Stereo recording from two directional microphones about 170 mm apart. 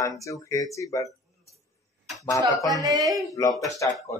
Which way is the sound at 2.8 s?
20° right (ahead or behind).